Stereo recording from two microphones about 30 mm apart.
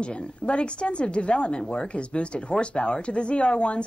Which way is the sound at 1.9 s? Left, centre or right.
Left.